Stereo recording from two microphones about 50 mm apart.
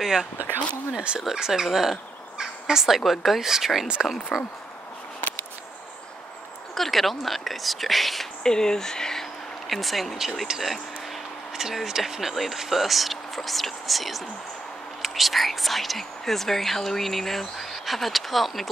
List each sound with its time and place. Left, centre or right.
0.0 s speech: centre
3.8 s speech: centre
4.3 s speech: centre
6.7 s speech: centre
8.5 s speech: centre
9.7 s speech: centre